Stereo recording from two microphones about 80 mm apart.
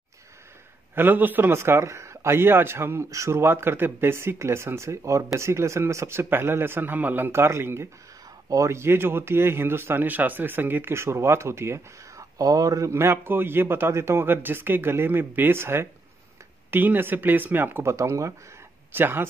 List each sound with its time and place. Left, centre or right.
0.9 s a man's voice: right
12.4 s speech: right
12.9 s a man's voice: right
17.8 s a man's voice: right
18.9 s speech: right